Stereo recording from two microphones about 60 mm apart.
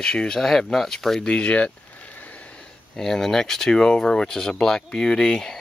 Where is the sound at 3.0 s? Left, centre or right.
Centre.